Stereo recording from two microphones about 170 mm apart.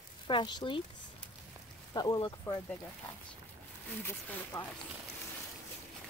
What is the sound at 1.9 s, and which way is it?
Speech, 25° left (ahead or behind).